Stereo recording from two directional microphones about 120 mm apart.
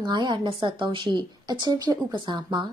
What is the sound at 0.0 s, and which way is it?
A woman's voice, 40° right (ahead or behind).